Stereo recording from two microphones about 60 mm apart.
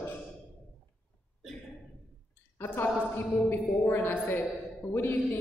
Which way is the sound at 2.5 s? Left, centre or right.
Left.